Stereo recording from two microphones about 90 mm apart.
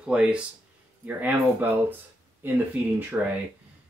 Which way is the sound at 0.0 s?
10° right (ahead or behind).